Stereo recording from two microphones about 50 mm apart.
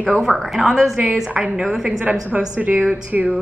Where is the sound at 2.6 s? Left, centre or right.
Right.